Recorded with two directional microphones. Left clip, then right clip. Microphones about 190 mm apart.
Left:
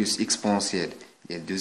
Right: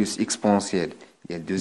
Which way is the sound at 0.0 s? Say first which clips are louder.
Right 2 dB; 35° right (ahead or behind).